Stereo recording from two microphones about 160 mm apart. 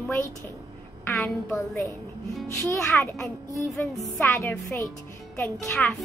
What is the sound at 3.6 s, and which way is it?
Speech, centre (ahead or behind).